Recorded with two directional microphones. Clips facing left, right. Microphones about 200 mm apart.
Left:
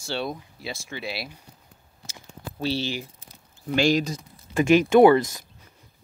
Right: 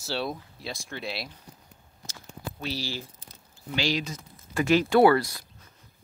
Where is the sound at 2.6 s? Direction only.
30° left (ahead or behind).